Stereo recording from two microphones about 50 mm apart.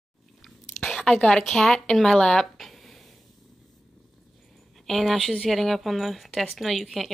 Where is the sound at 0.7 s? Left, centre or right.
Centre.